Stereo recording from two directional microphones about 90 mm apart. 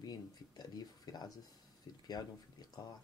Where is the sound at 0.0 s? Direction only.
50° left (ahead or behind).